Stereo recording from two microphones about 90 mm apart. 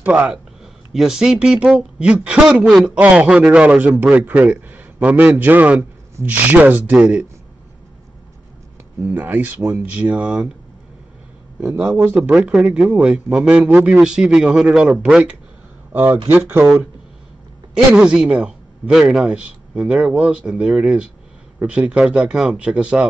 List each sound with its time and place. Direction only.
0.0 s a man's voice: 15° right (ahead or behind)
9.0 s speech: 20° right (ahead or behind)
9.9 s a man's voice: 15° right (ahead or behind)
11.7 s a man's voice: 15° right (ahead or behind)
12.3 s a man's voice: 5° right (ahead or behind); by 16.6 s 25° right (ahead or behind)
17.9 s a man's voice: 10° right (ahead or behind)